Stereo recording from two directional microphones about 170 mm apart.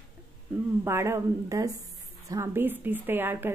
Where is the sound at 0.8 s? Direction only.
15° right (ahead or behind).